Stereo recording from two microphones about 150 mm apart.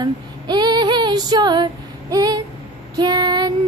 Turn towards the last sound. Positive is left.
turn(degrees=-25)  # may be behind; listen again after turning